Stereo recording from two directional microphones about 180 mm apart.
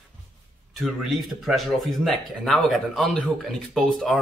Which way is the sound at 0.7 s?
Centre (ahead or behind).